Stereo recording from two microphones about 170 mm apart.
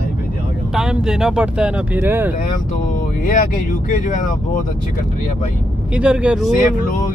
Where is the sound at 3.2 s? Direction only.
50° left (ahead or behind).